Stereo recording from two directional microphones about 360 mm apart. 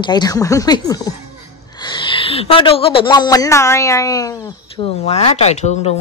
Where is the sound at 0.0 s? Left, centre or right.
Centre.